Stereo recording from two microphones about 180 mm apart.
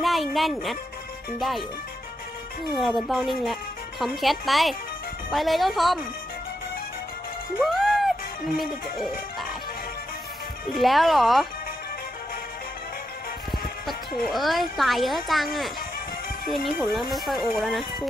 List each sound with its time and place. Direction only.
0.0 s speech: centre (ahead or behind)
2.7 s speech: centre (ahead or behind)
7.6 s music: centre (ahead or behind)
10.7 s speech: centre (ahead or behind)
14.2 s speech: centre (ahead or behind)